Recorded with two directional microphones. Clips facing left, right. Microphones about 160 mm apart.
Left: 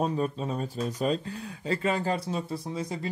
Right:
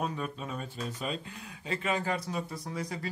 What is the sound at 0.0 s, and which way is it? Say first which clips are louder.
Speech: left 7 dB; 35° left (ahead or behind).